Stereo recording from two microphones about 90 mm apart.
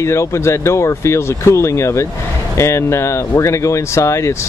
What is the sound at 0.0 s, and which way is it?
Speech, 30° left (ahead or behind).